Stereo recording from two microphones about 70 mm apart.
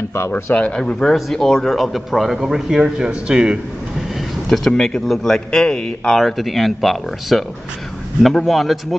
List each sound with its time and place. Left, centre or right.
0.3 s a man's voice: left; by 3.5 s centre
4.5 s a man's voice: centre